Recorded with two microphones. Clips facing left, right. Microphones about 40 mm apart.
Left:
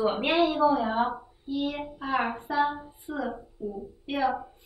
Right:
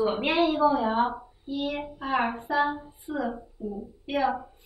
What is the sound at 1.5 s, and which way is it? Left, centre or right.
Child singing, centre.